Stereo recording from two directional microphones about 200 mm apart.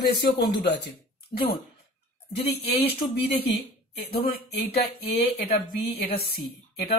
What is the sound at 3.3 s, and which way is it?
Speech, 30° left (ahead or behind).